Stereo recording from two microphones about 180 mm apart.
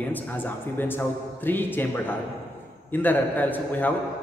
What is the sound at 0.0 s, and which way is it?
A man's voice, 10° left (ahead or behind).